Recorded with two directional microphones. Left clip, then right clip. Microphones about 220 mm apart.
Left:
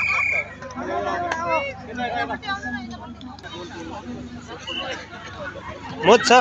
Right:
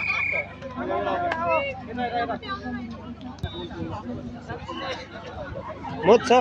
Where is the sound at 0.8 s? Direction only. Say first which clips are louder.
Left 1 dB; 50° left (ahead or behind).